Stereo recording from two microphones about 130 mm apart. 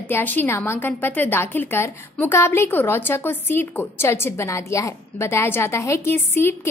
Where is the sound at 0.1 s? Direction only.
15° left (ahead or behind).